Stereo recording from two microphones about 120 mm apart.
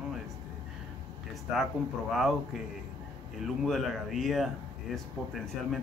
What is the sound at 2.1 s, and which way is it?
Speech, centre (ahead or behind).